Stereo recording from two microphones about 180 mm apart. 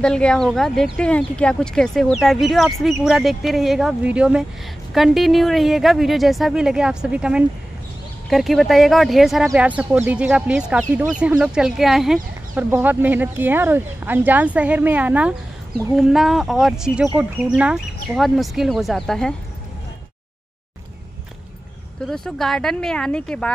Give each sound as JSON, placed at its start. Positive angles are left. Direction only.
{"t": 0.0, "sound": "speech", "side_deg": 5}
{"t": 22.0, "sound": "speech", "side_deg": 0}